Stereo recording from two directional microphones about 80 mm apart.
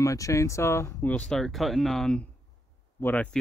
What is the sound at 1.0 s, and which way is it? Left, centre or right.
Speech, centre.